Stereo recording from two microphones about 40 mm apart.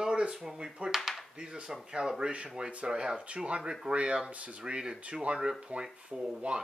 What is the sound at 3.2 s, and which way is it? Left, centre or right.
Speech, right.